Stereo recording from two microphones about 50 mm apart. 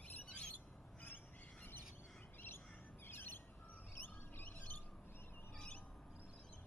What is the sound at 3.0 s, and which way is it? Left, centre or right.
Bird, left.